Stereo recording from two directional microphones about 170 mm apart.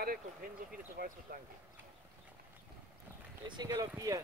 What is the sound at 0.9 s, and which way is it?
Speech, 60° right (ahead or behind).